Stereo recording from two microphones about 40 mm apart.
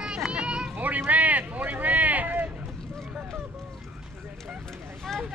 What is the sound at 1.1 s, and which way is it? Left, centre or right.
Speech, right.